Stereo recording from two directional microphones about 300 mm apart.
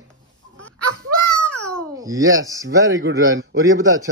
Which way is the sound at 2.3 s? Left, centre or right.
Centre.